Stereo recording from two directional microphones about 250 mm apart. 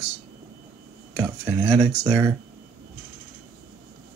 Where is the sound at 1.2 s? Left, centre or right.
Centre.